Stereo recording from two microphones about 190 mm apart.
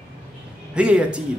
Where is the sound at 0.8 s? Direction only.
5° right (ahead or behind).